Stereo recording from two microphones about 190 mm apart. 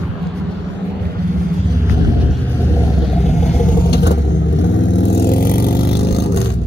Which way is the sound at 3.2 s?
40° left (ahead or behind).